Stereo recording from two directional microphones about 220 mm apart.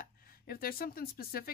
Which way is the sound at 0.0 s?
40° left (ahead or behind).